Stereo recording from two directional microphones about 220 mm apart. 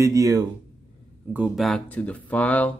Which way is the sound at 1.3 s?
5° right (ahead or behind).